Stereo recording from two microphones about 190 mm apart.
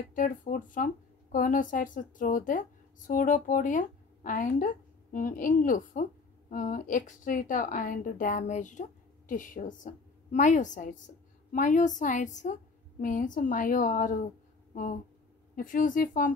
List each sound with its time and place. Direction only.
0.1 s a woman's voice: 45° left (ahead or behind)